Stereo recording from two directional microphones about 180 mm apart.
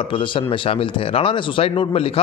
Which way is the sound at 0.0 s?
30° left (ahead or behind).